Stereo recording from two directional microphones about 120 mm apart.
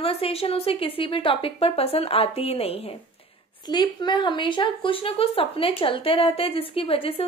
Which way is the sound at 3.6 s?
35° left (ahead or behind).